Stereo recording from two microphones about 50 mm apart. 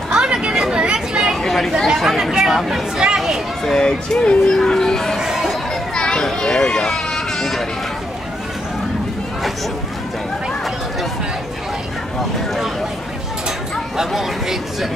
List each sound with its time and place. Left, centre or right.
0.1 s chatter: centre
1.4 s chatter: centre
2.0 s chatter: centre
3.0 s a sound: centre
3.6 s speech: centre
4.6 s a sound: centre
5.2 s chatter: centre
5.9 s children playing: centre
13.9 s speech: centre